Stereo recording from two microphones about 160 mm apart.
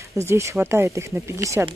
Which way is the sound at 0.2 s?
15° right (ahead or behind).